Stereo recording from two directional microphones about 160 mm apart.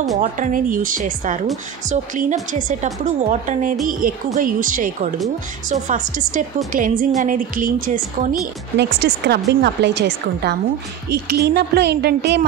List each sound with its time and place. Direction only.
0.2 s a woman's voice: 55° right (ahead or behind)
8.7 s a woman's voice: 90° right